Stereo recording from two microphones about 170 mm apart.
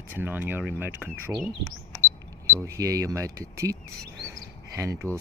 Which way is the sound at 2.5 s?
20° right (ahead or behind).